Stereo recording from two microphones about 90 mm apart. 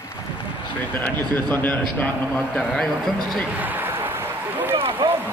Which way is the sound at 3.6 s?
20° right (ahead or behind).